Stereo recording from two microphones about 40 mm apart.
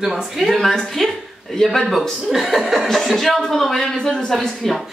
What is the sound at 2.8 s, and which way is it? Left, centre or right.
A woman's voice, centre.